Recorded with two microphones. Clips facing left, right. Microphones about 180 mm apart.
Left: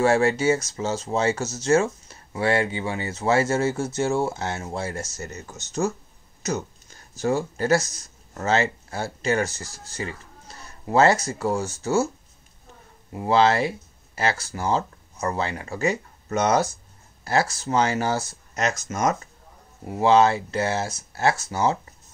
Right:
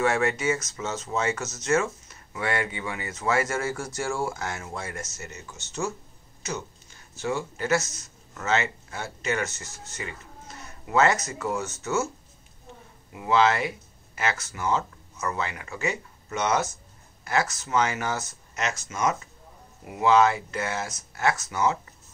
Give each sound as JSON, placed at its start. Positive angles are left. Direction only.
{"t": 0.0, "sound": "speech", "side_deg": 30}
{"t": 13.1, "sound": "speech", "side_deg": 35}
{"t": 19.8, "sound": "speech", "side_deg": 30}